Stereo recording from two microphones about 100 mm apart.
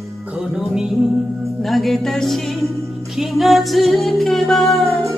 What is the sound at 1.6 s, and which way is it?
Music, centre (ahead or behind).